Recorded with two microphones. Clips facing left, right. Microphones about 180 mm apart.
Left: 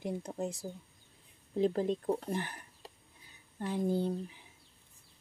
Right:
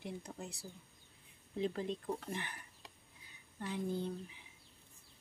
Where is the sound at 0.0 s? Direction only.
40° left (ahead or behind).